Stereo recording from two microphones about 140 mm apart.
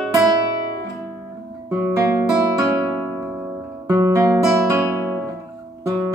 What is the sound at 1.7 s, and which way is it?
Guitar, 15° right (ahead or behind).